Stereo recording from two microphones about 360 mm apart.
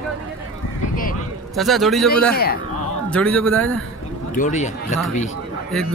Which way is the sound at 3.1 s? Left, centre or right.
Centre.